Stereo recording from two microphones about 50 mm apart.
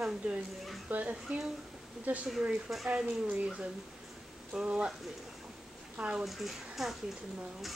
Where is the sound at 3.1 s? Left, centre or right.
Right.